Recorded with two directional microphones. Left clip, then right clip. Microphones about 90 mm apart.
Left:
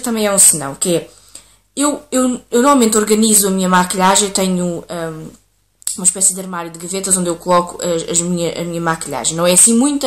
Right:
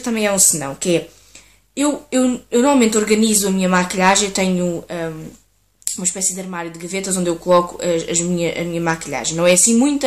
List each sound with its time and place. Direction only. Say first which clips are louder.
0.0 s a woman's voice: left 3 dB; 15° left (ahead or behind)